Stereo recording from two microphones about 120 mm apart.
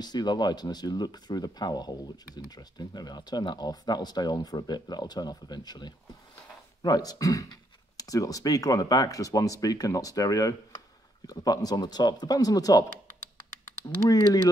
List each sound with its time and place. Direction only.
0.0 s speech: 35° left (ahead or behind)
14.0 s speech: 35° left (ahead or behind)